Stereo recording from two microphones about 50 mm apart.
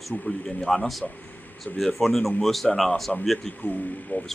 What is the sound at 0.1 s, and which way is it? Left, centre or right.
Speech, left.